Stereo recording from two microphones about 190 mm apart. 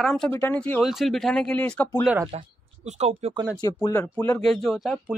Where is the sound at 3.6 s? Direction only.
20° left (ahead or behind); by 5.2 s centre (ahead or behind).